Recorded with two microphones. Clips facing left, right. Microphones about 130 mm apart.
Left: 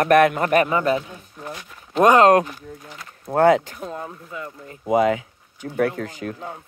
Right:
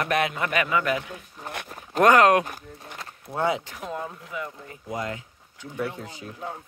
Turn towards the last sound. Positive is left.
turn(degrees=90)